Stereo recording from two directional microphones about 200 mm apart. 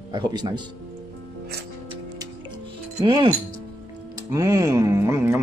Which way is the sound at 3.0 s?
20° right (ahead or behind).